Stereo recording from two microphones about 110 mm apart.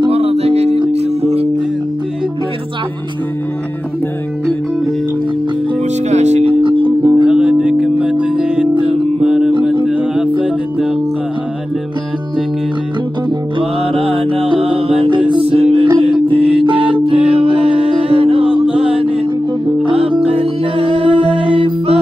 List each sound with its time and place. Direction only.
0.0 s music: 65° right (ahead or behind)
6.0 s music: 90° right
6.6 s music: 50° right (ahead or behind)
7.2 s music: 10° right (ahead or behind)
9.5 s music: 50° right (ahead or behind)
9.8 s music: 10° right (ahead or behind)
13.6 s music: 55° right (ahead or behind)
20.3 s music: 60° right (ahead or behind)